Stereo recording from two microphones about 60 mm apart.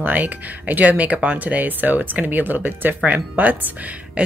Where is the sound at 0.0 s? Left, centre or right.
Right.